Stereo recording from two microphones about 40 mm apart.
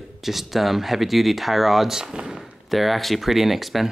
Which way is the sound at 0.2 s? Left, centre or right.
Centre.